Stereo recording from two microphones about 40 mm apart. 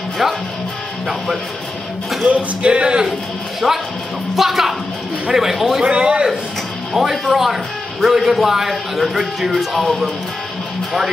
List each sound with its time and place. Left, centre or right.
0.2 s music: centre
1.0 s speech: centre
2.2 s music: right
3.6 s speech: centre
4.4 s speech: centre
5.9 s music: right
6.9 s speech: centre